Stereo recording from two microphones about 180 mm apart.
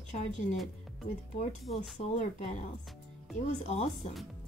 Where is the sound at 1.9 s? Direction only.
40° left (ahead or behind).